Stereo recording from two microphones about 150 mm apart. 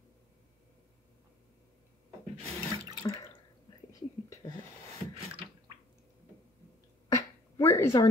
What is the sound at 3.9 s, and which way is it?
Whispering, 25° left (ahead or behind).